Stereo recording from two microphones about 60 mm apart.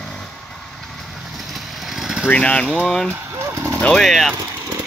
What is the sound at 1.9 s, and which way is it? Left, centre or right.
Vehicle, centre.